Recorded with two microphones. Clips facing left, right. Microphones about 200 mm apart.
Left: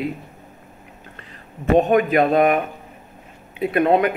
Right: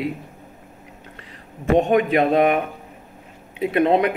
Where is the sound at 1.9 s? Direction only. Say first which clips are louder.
Left 1 dB; 25° right (ahead or behind).